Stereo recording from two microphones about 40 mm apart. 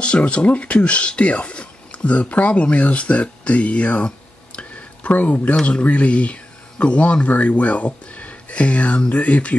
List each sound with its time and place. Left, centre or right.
0.0 s speech: left
4.6 s a sound: left
5.6 s speech: left